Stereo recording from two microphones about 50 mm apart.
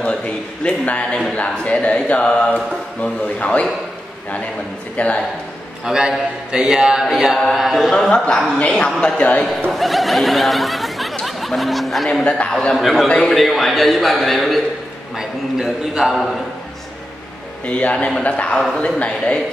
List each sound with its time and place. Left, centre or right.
0.0 s mantra: left
4.9 s mantra: left
5.9 s a man's voice: centre
8.1 s mantra: centre
8.6 s a woman's voice: centre
9.0 s mantra: left
9.7 s a man's voice: centre
15.1 s a man's voice: centre
17.6 s mantra: left
17.9 s a woman's voice: centre
18.2 s mantra: left